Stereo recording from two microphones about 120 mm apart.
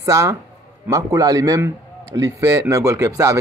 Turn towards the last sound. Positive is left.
turn(degrees=-25)  # may be behind; listen again after turning